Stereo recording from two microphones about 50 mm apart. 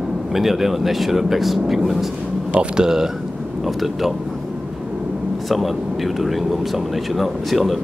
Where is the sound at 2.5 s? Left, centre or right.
Centre.